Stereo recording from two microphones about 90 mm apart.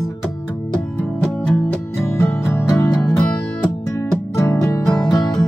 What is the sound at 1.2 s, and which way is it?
Music, 10° left (ahead or behind).